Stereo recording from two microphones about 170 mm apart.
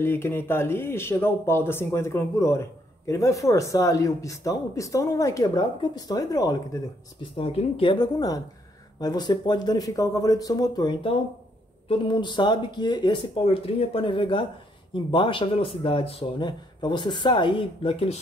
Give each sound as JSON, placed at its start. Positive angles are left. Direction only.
{"t": 0.0, "sound": "speech", "side_deg": 15}
{"t": 7.3, "sound": "speech", "side_deg": 35}